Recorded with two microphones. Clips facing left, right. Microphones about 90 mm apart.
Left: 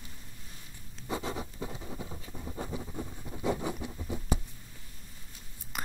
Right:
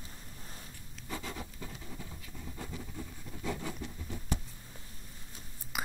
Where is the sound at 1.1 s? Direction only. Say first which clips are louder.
Left 6 dB; 25° left (ahead or behind).